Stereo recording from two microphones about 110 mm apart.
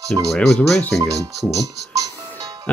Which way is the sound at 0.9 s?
30° right (ahead or behind).